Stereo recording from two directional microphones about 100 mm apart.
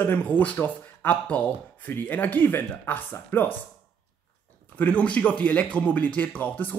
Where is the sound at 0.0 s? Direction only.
20° left (ahead or behind).